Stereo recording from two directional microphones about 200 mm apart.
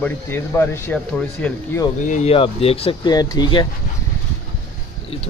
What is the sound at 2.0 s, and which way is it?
Speech, 35° left (ahead or behind).